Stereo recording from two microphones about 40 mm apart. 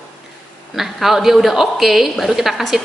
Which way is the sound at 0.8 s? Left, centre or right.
Centre.